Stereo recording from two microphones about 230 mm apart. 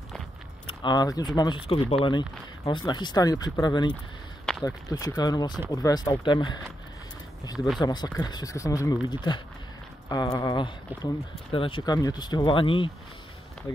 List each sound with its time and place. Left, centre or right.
0.7 s speech: centre
7.5 s speech: centre
7.8 s speech: centre